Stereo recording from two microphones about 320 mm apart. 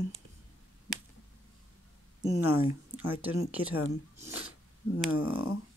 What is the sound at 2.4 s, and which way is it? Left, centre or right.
Speech, centre.